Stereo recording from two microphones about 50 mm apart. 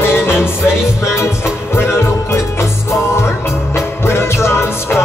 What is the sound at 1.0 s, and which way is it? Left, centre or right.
Music, left.